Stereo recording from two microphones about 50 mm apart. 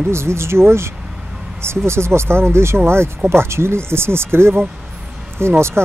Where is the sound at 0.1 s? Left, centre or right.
Right.